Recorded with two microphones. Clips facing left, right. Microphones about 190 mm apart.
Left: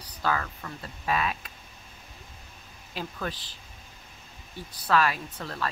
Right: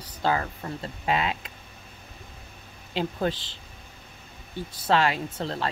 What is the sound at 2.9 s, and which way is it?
Speech, 25° right (ahead or behind).